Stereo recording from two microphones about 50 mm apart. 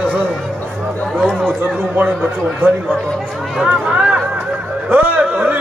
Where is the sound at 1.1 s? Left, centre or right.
Centre.